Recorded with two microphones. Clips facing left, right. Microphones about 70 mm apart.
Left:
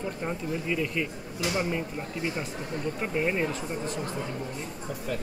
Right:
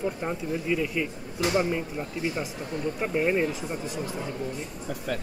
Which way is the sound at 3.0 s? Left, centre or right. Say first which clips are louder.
Right 3 dB; centre.